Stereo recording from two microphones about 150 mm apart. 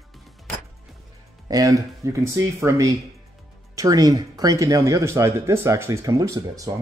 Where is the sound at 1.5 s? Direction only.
25° right (ahead or behind).